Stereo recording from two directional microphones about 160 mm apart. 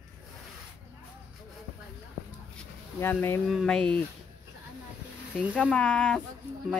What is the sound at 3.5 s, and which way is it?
Speech, centre (ahead or behind).